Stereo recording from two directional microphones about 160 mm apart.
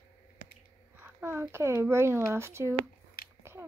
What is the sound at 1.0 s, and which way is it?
Speech, 15° right (ahead or behind).